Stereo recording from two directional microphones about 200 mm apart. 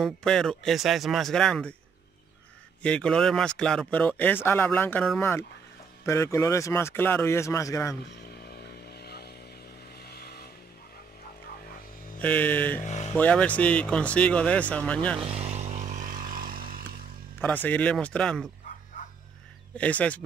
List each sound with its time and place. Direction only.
0.0 s speech: 5° left (ahead or behind)
2.8 s speech: 5° left (ahead or behind)
8.4 s vehicle: 50° left (ahead or behind)
12.2 s speech: 10° left (ahead or behind)
12.8 s speech: 35° left (ahead or behind)
13.1 s speech: 5° left (ahead or behind)
15.1 s a sound: 30° right (ahead or behind); by 16.8 s 45° right (ahead or behind)
17.4 s speech: 10° left (ahead or behind)
19.8 s speech: 5° left (ahead or behind)